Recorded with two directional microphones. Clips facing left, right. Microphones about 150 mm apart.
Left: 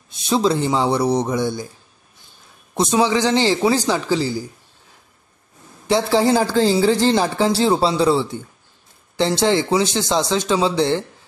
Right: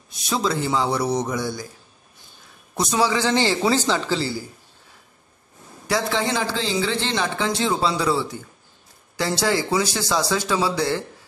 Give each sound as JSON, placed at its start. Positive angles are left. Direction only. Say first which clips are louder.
{"t": 0.1, "sound": "speech", "louder": "left 6 dB", "side_deg": 25}
{"t": 2.7, "sound": "speech", "louder": "left 4 dB", "side_deg": 25}
{"t": 5.9, "sound": "a man's voice", "louder": "left 7 dB", "side_deg": 30}